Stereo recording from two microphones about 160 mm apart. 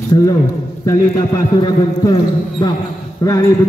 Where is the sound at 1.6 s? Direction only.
25° left (ahead or behind).